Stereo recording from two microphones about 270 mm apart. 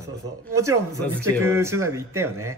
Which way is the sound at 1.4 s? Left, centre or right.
Centre.